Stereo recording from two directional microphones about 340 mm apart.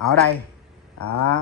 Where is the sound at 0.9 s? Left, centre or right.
Left.